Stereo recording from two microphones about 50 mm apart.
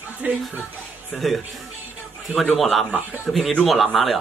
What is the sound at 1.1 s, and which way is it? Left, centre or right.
Speech, centre.